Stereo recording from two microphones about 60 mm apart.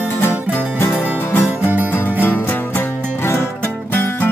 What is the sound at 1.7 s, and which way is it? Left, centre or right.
Music, right.